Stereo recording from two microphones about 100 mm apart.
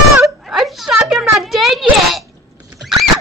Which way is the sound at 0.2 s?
Centre (ahead or behind).